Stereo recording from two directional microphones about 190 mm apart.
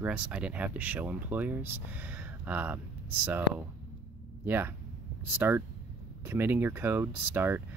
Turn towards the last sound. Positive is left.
turn(degrees=-10)  # may be behind; listen again after turning